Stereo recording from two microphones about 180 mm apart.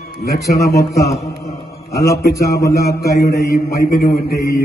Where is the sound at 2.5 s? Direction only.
15° left (ahead or behind).